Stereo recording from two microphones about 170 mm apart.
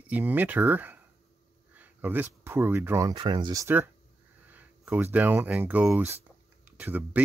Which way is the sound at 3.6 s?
10° right (ahead or behind).